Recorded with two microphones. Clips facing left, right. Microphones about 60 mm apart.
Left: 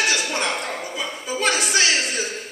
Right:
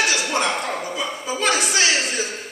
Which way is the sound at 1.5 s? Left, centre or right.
Right.